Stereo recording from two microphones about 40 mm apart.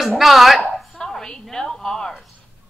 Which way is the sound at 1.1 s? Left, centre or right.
Centre.